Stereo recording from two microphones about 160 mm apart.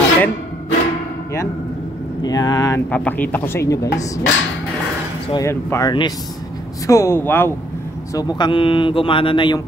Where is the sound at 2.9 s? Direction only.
10° left (ahead or behind).